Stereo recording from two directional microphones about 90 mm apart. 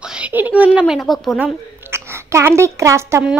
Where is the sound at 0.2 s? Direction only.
20° right (ahead or behind).